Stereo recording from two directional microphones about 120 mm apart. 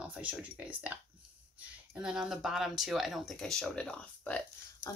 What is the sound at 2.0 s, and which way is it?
Speech, 5° right (ahead or behind).